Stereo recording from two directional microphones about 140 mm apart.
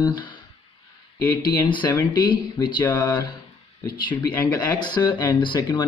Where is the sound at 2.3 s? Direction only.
30° left (ahead or behind).